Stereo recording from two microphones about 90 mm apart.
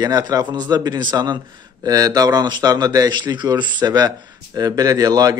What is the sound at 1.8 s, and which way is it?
A man's voice, 45° right (ahead or behind).